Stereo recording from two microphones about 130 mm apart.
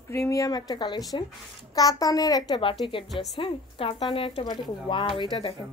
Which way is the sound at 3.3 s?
40° left (ahead or behind).